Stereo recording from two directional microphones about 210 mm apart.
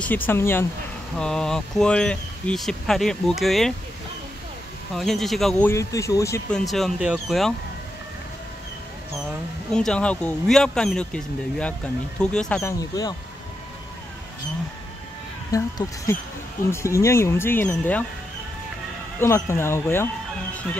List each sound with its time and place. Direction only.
0.0 s speech: 10° left (ahead or behind)
4.9 s speech: centre (ahead or behind)
5.7 s speech: 15° left (ahead or behind)
6.5 s speech: centre (ahead or behind)
9.8 s speech: 5° left (ahead or behind)
15.5 s speech: 15° left (ahead or behind)
19.1 s speech: 10° left (ahead or behind)